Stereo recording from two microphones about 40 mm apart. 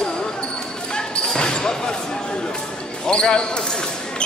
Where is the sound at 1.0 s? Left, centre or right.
Centre.